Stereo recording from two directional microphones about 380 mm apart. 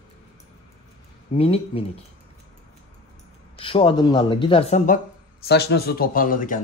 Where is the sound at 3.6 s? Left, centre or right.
Centre.